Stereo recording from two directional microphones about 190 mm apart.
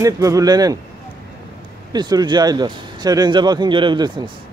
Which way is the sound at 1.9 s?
20° right (ahead or behind).